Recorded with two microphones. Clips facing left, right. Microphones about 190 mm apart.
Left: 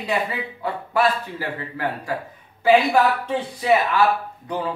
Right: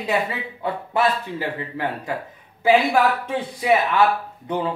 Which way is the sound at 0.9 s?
20° right (ahead or behind).